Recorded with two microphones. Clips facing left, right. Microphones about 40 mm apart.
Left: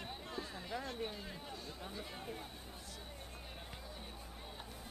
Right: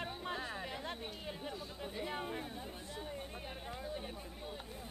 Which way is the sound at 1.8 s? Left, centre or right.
Right.